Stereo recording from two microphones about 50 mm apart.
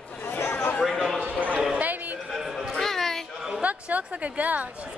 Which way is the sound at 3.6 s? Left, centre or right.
Right.